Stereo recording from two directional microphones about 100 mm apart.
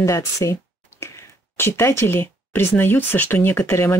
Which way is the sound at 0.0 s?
30° left (ahead or behind).